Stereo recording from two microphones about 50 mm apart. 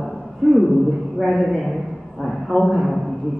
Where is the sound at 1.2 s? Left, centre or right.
Centre.